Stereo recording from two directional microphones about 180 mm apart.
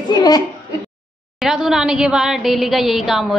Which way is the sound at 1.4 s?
5° right (ahead or behind).